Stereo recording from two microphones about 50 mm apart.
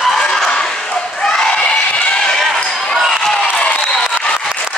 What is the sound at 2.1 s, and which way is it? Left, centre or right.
Basketball bounce, centre.